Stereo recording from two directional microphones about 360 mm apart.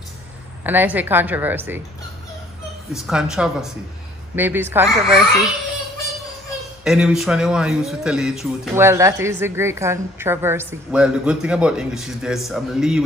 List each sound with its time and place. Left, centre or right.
0.7 s speech: centre
2.9 s speech: centre
6.8 s speech: centre